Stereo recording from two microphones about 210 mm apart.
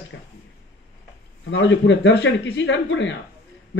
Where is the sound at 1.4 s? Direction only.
60° left (ahead or behind).